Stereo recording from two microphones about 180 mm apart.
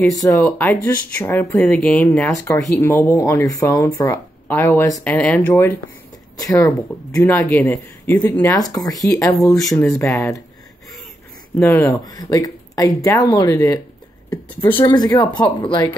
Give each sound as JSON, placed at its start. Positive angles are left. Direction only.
{"t": 0.1, "sound": "speech", "side_deg": 20}
{"t": 11.5, "sound": "speech", "side_deg": 10}
{"t": 14.8, "sound": "speech", "side_deg": 25}